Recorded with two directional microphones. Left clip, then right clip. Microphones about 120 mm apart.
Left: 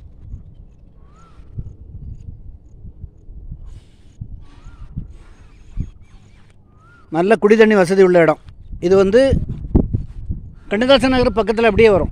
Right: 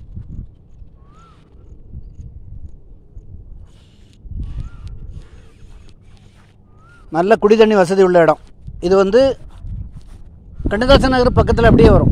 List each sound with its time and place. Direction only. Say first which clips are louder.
7.1 s a man's voice: right 1 dB; 35° left (ahead or behind)
10.7 s a man's voice: right 1 dB; 40° left (ahead or behind)